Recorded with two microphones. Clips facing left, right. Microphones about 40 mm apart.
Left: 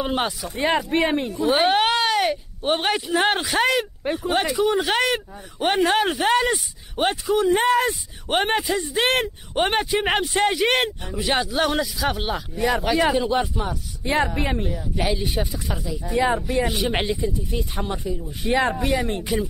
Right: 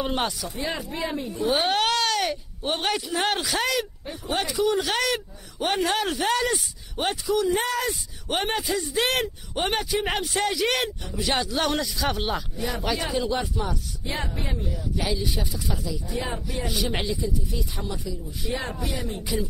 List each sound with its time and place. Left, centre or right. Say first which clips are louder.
0.0 s speech: left 3 dB; centre
0.6 s speech: left 11 dB; left
1.3 s speech: left 3 dB; left
1.6 s speech: left 5 dB; left
4.0 s speech: left 11 dB; left
4.3 s speech: left 4 dB; left
4.6 s speech: even; left; by 12.9 s centre
13.1 s speech: left 5 dB; left
14.0 s speech: left 10 dB; left
15.0 s speech: left 4 dB; left
16.1 s speech: left 12 dB; left
16.6 s speech: left 4 dB; left
18.5 s speech: left 10 dB; left
18.8 s speech: left 8 dB; left